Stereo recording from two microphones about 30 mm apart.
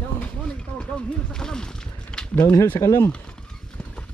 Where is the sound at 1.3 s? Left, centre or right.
Left.